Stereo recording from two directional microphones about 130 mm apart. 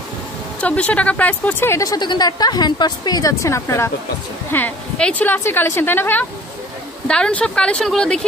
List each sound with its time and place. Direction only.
0.6 s a woman's voice: 10° left (ahead or behind)